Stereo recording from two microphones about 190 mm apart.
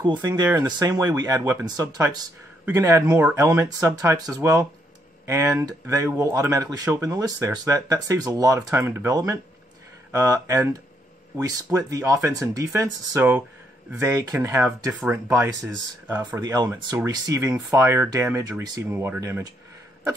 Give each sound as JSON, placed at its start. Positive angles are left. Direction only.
{"t": 0.0, "sound": "speech", "side_deg": -25}